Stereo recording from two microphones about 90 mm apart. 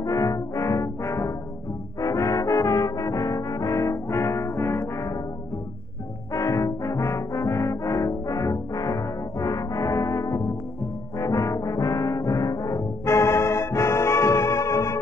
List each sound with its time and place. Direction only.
0.0 s brass instrument: 40° left (ahead or behind)
6.3 s brass instrument: 40° left (ahead or behind)